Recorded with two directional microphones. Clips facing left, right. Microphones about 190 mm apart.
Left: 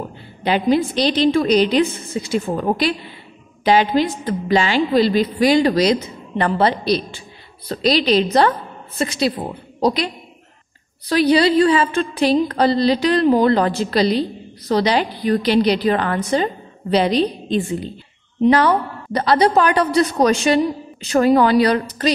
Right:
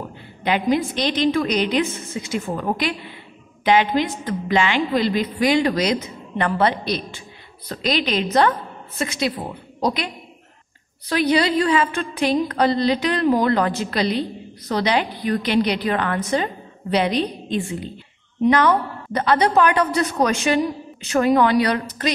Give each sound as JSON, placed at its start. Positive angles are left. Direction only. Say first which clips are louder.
{"t": 0.4, "sound": "a woman's voice", "louder": "left 3 dB", "side_deg": 35}